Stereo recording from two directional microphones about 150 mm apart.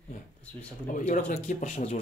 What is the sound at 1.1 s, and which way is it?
Speech, 60° left (ahead or behind).